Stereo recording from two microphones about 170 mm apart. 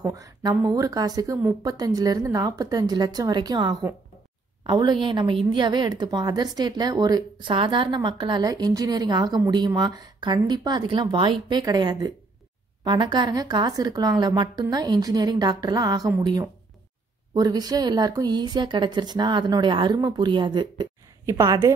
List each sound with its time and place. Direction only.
0.0 s speech: 20° right (ahead or behind)